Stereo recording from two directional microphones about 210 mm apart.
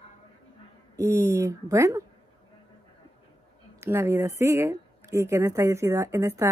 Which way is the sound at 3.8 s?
10° right (ahead or behind).